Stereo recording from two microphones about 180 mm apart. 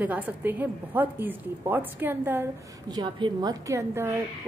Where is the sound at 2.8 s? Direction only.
25° right (ahead or behind).